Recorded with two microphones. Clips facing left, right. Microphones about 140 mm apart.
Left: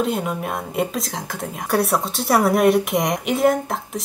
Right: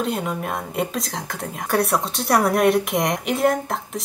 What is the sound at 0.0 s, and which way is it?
Speech, centre (ahead or behind).